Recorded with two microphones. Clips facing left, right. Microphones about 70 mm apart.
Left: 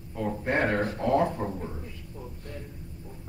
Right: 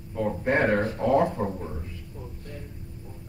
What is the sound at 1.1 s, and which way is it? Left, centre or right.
Speech, centre.